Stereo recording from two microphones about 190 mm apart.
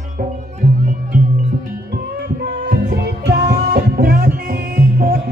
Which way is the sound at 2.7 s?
55° right (ahead or behind).